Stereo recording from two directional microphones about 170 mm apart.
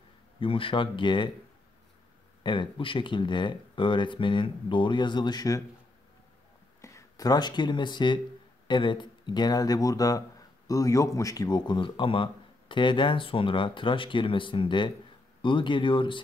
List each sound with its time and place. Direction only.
0.4 s speech: 30° left (ahead or behind)
2.4 s speech: 30° left (ahead or behind)
6.8 s speech: 15° left (ahead or behind)